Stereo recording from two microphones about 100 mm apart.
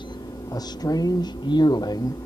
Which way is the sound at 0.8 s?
40° left (ahead or behind).